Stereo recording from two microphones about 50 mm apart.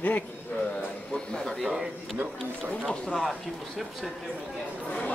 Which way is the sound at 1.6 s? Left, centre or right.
Centre.